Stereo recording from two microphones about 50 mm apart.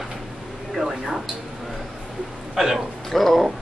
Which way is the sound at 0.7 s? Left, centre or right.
Centre.